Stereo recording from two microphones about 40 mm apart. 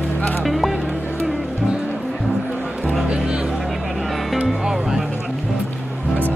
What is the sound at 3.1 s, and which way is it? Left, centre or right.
Music, right.